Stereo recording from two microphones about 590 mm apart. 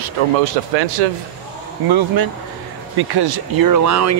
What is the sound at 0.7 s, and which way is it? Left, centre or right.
Speech, right.